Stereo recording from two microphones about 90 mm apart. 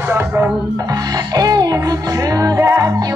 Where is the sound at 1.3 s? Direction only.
45° right (ahead or behind).